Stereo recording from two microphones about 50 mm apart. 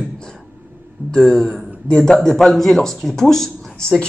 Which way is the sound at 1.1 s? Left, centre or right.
Centre.